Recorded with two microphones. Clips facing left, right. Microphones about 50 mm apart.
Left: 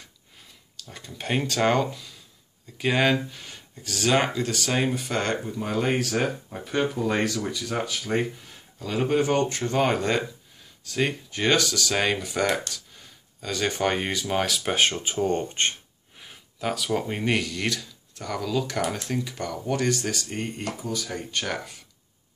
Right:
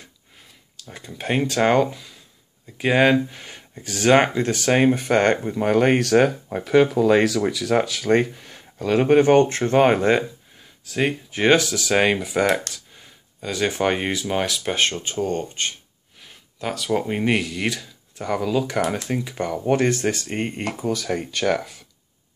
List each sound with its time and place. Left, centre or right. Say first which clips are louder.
0.7 s speech: right 3 dB; centre; by 5.5 s right
5.5 s speech: right 8 dB; right
9.0 s speech: right 7 dB; right
9.9 s speech: right 6 dB; centre
15.4 s speech: left 1 dB; left
16.2 s a sound: even; centre
16.9 s speech: right 6 dB; centre; by 20.9 s right
20.9 s speech: right 9 dB; right